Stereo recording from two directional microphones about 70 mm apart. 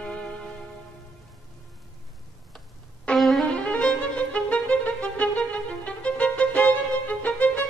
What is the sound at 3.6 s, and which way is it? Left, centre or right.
Violin, centre.